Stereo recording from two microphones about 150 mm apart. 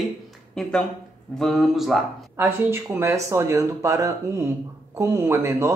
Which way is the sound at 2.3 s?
15° right (ahead or behind).